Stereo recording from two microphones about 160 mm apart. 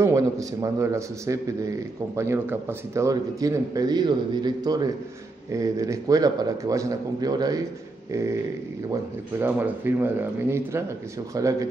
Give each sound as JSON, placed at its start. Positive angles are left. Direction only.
{"t": 0.0, "sound": "a man's voice", "side_deg": -20}
{"t": 9.4, "sound": "speech", "side_deg": -10}
{"t": 11.3, "sound": "a man's voice", "side_deg": -20}